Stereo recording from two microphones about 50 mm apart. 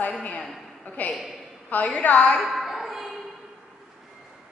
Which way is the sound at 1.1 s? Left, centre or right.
Centre.